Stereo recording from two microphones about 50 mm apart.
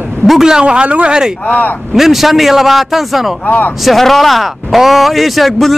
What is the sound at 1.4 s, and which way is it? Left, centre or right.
Speech, left.